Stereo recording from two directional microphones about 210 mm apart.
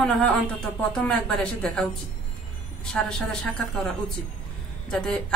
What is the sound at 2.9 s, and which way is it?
Speech, 5° left (ahead or behind).